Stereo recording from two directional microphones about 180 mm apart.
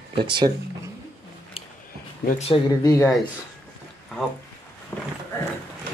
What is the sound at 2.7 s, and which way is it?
Speech, 20° left (ahead or behind).